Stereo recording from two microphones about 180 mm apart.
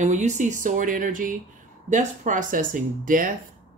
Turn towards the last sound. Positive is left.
turn(degrees=-45)  # may be behind; listen again after turning